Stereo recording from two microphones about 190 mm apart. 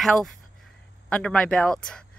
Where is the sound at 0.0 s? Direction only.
Centre (ahead or behind).